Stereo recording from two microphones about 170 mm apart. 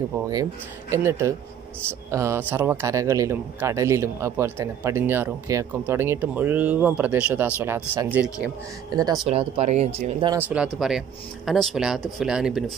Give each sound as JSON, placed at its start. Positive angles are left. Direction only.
{"t": 0.3, "sound": "speech", "side_deg": -20}
{"t": 9.3, "sound": "speech", "side_deg": -35}
{"t": 10.3, "sound": "speech", "side_deg": -5}